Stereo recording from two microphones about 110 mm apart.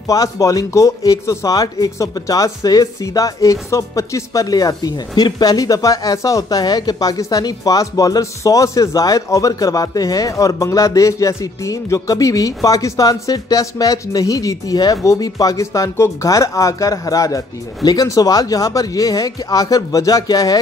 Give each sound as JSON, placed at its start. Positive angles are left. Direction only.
{"t": 0.0, "sound": "speech", "side_deg": 35}